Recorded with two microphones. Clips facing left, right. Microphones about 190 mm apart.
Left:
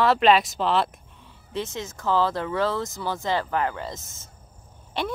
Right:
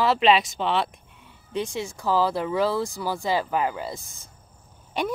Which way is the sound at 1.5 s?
15° right (ahead or behind).